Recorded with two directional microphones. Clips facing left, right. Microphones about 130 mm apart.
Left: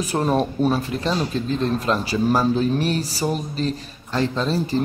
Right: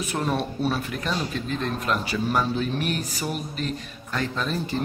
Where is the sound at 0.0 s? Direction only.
35° left (ahead or behind).